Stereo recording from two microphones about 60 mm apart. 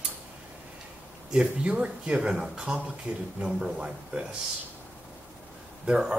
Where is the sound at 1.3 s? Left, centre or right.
Centre.